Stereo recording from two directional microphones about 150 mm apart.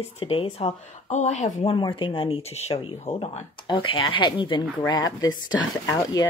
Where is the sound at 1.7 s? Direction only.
35° left (ahead or behind).